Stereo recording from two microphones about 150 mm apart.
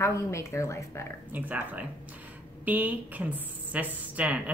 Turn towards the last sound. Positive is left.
turn(degrees=-10)  # may be behind; listen again after turning